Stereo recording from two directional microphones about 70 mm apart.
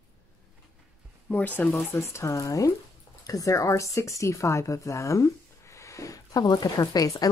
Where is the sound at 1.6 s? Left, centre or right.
Left.